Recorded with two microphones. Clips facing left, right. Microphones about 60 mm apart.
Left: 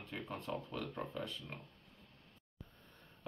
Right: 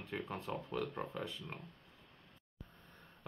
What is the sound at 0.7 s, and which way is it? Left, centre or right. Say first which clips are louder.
Speech: right 2 dB; centre.